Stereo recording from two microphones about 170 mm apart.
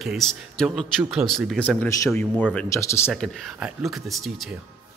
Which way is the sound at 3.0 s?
5° right (ahead or behind).